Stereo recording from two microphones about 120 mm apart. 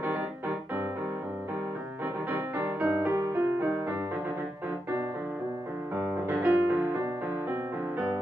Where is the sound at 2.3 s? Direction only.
15° right (ahead or behind).